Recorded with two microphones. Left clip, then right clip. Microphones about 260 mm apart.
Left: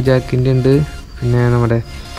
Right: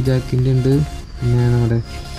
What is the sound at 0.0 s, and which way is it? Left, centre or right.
Speech, centre.